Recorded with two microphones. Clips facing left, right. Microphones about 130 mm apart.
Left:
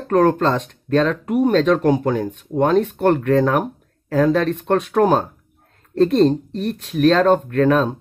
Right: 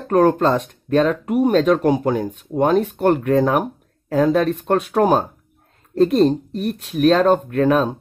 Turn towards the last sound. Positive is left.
turn(degrees=-10)  # may be behind; listen again after turning